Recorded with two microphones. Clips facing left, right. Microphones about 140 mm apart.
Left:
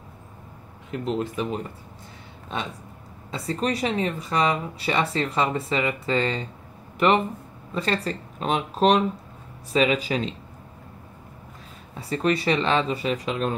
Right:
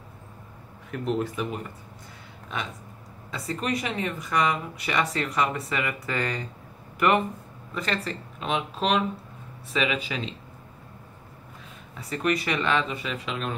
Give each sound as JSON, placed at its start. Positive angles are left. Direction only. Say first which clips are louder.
{"t": 0.9, "sound": "speech", "louder": "left 1 dB", "side_deg": 25}
{"t": 3.3, "sound": "speech", "louder": "left 3 dB", "side_deg": 30}
{"t": 11.9, "sound": "speech", "louder": "left 3 dB", "side_deg": 30}